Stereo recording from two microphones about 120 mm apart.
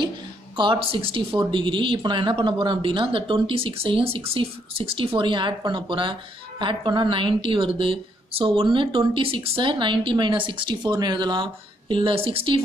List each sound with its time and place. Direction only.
0.6 s a woman's voice: 45° right (ahead or behind)